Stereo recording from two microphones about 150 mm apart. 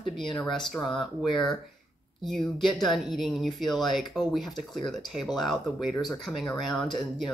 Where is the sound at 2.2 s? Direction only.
Centre (ahead or behind).